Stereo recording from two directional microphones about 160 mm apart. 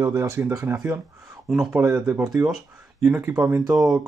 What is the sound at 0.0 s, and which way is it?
Speech, 15° right (ahead or behind).